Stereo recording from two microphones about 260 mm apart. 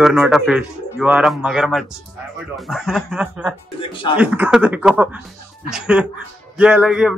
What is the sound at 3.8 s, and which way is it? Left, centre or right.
Speech, centre.